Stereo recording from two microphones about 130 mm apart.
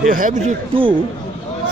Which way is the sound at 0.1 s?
90° right.